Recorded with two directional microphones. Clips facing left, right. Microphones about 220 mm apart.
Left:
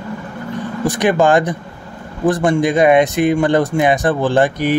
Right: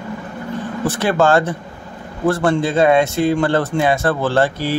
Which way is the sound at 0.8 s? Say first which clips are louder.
Left 2 dB; 15° left (ahead or behind).